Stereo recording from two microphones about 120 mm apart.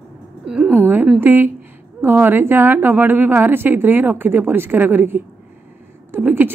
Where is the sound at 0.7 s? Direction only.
15° right (ahead or behind).